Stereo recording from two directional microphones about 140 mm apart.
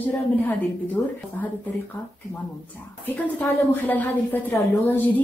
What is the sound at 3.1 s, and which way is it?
A woman's voice, 10° left (ahead or behind).